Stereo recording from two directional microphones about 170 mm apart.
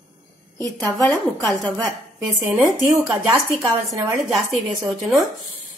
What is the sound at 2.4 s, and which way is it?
Speech, 20° right (ahead or behind).